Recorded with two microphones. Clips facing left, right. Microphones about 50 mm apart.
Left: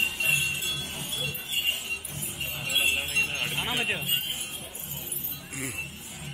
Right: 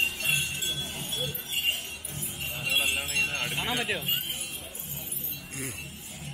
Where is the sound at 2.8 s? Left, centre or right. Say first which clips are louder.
Left 2 dB; centre.